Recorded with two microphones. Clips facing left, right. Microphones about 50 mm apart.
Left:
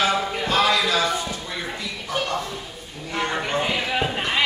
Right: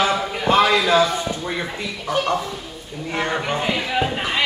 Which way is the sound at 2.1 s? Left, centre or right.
Centre.